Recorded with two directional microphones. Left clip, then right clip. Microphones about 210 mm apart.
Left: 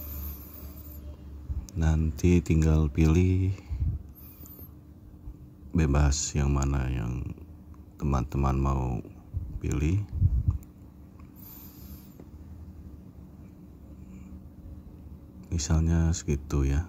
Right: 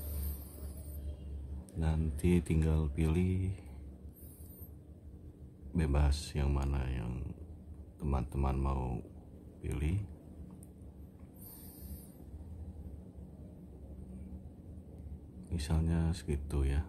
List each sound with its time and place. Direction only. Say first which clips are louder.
1.8 s speech: left 8 dB; 20° left (ahead or behind)
5.8 s speech: left 9 dB; 20° left (ahead or behind)
15.5 s speech: left 7 dB; 20° left (ahead or behind)